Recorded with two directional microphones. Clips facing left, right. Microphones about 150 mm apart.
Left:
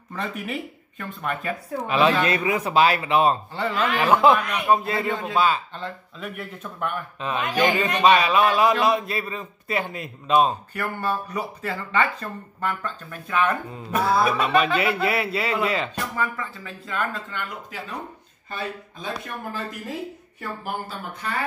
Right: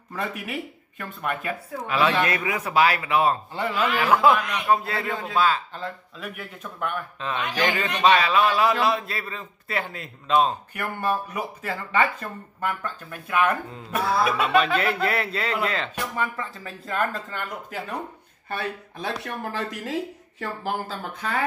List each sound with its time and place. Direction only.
0.1 s speech: 5° right (ahead or behind)
1.9 s speech: 20° left (ahead or behind)
3.5 s speech: 10° right (ahead or behind)
4.0 s a man's voice: 20° left (ahead or behind)
5.8 s speech: centre (ahead or behind)
7.2 s a man's voice: 15° left (ahead or behind)
10.7 s speech: 10° right (ahead or behind)
13.9 s a man's voice: centre (ahead or behind)
16.6 s speech: 45° right (ahead or behind)
18.5 s speech: 65° right (ahead or behind); by 21.0 s 90° right